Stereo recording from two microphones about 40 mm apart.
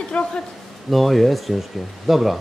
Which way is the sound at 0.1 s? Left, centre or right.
Left.